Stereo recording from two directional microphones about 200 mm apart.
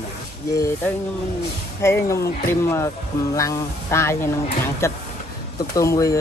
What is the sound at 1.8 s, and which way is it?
Speech, 15° left (ahead or behind).